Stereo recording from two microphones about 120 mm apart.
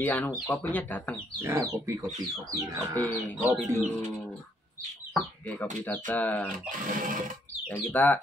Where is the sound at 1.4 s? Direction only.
25° right (ahead or behind).